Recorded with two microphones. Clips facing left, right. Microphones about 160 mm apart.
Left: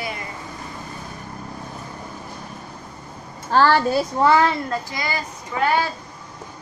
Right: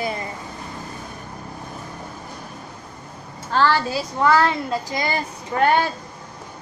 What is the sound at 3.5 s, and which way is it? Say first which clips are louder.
Speech: left 3 dB; 45° left (ahead or behind).